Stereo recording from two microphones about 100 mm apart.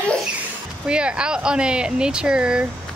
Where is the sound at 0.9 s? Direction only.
10° right (ahead or behind).